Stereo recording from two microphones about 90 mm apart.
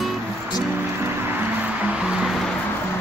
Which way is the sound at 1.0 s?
20° right (ahead or behind).